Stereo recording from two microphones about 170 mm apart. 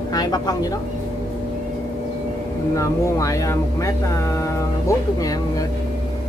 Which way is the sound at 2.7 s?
20° left (ahead or behind).